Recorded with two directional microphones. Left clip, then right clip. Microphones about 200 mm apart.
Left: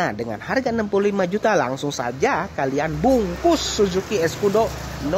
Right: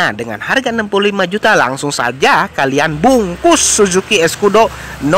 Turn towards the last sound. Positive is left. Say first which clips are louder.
# right 10 dB
turn(degrees=-15)  # may be behind; listen again after turning